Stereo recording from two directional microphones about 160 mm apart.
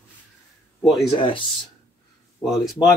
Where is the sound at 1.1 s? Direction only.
30° left (ahead or behind).